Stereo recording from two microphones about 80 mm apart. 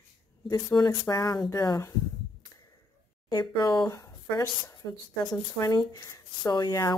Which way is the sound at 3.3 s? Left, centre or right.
Left.